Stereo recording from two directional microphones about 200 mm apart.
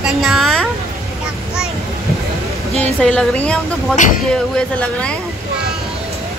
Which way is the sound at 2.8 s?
5° left (ahead or behind).